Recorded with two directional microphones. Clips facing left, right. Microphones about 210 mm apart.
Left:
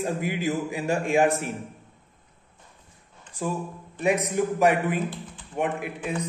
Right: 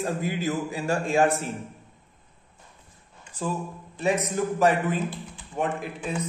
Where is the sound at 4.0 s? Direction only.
15° left (ahead or behind).